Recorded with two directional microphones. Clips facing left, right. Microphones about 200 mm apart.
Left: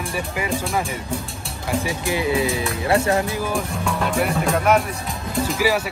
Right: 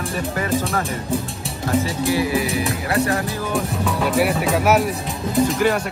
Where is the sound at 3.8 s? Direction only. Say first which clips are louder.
Right 3 dB; 5° right (ahead or behind).